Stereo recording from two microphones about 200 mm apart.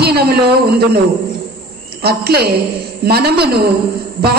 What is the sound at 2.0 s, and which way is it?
Music, 50° right (ahead or behind).